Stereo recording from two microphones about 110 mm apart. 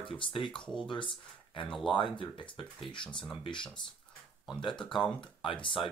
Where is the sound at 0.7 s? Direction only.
50° left (ahead or behind).